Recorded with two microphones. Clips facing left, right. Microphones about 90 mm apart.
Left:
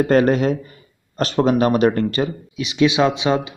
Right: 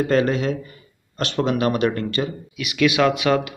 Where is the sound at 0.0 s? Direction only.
40° left (ahead or behind).